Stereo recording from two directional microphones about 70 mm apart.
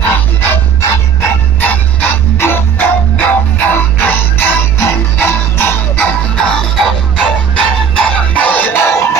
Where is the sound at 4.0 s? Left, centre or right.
Left.